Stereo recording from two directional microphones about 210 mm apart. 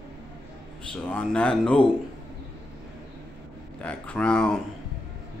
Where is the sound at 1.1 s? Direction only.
5° left (ahead or behind).